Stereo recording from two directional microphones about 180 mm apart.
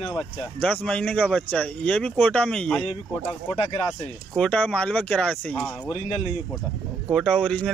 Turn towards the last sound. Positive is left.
turn(degrees=5)  # may be behind; listen again after turning